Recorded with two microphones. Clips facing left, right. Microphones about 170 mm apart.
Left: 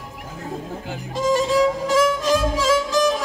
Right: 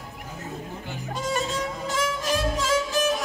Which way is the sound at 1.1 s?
90° left.